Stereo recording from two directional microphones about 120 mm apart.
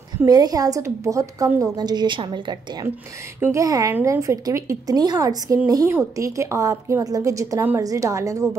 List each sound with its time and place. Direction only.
0.2 s a woman's voice: 30° right (ahead or behind)
3.3 s a woman's voice: 20° right (ahead or behind)
3.6 s a woman's voice: 30° right (ahead or behind)